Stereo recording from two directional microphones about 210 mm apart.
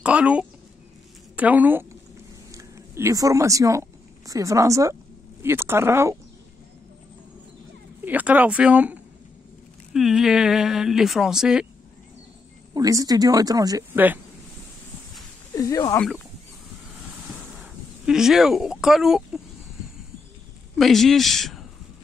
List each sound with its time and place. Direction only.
0.0 s a woman's voice: 5° right (ahead or behind)
8.0 s speech: 10° right (ahead or behind)
12.7 s speech: 15° right (ahead or behind)
15.5 s speech: 15° left (ahead or behind)
17.6 s speech: centre (ahead or behind)
20.7 s speech: centre (ahead or behind)